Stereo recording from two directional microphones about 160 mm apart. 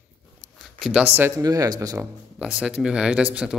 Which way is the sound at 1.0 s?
15° right (ahead or behind).